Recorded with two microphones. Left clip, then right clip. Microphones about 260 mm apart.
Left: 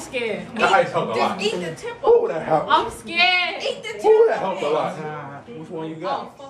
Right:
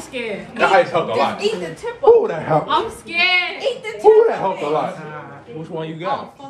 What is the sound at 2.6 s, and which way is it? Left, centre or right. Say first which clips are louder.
Speech: even; centre.